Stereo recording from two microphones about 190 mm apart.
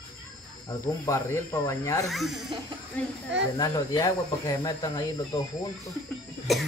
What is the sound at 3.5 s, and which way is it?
Speech, 20° left (ahead or behind).